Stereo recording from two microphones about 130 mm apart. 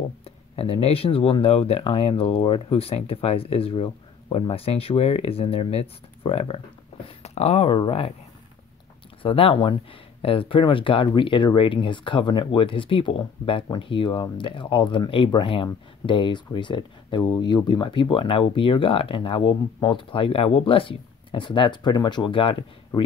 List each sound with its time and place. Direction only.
0.2 s speech: 50° left (ahead or behind)
9.2 s speech: 45° left (ahead or behind)